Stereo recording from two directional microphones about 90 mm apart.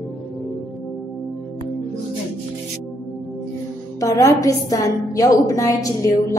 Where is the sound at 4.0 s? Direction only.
40° left (ahead or behind).